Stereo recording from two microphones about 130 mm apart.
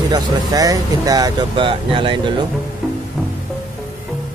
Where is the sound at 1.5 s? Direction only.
40° right (ahead or behind).